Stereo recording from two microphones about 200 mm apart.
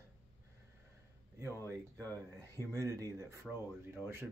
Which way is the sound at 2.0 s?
10° left (ahead or behind).